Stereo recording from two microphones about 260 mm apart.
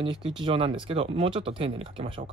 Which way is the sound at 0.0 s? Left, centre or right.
Centre.